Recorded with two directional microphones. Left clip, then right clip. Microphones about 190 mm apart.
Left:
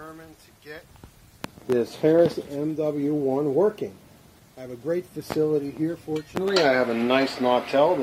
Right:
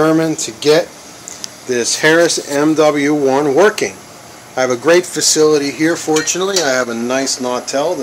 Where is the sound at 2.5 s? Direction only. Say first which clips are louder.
Right 15 dB; 35° right (ahead or behind).